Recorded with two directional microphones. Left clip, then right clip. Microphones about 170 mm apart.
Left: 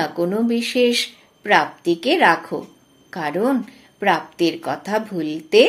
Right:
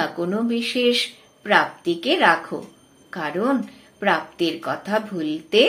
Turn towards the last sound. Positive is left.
turn(degrees=40)  # may be behind; listen again after turning